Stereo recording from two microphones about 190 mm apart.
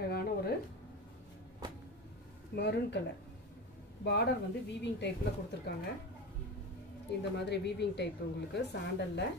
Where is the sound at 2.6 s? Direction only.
60° left (ahead or behind).